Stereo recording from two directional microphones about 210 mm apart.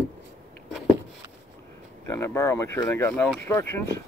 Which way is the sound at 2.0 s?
15° left (ahead or behind).